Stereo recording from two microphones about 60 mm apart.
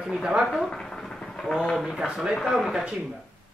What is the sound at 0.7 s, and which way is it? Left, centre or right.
Speech, centre.